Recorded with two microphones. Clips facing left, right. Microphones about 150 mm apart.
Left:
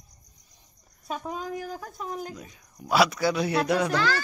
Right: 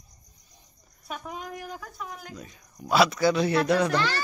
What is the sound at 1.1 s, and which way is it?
Speech, 30° left (ahead or behind).